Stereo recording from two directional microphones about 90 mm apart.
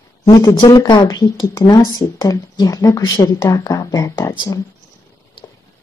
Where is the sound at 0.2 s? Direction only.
40° left (ahead or behind).